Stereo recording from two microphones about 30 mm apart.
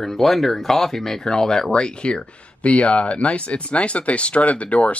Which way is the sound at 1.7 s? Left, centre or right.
Left.